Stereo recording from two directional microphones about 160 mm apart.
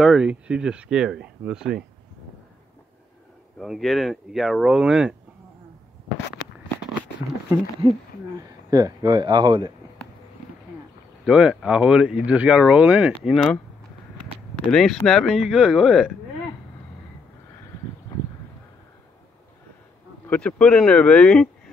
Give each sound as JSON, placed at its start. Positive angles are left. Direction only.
{"t": 0.0, "sound": "speech", "side_deg": -5}
{"t": 3.5, "sound": "speech", "side_deg": 0}
{"t": 8.4, "sound": "speech", "side_deg": -20}
{"t": 11.2, "sound": "speech", "side_deg": -5}
{"t": 14.5, "sound": "speech", "side_deg": 5}
{"t": 20.2, "sound": "speech", "side_deg": 5}